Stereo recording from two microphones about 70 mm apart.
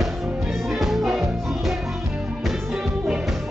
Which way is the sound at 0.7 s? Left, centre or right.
Centre.